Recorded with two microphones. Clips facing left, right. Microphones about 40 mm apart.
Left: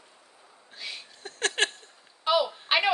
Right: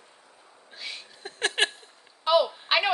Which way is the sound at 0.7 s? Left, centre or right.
Centre.